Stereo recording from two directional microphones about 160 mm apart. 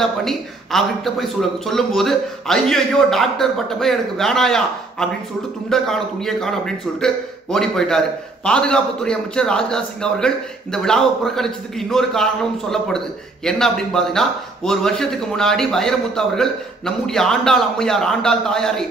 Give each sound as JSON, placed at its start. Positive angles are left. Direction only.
{"t": 0.0, "sound": "a man's voice", "side_deg": 0}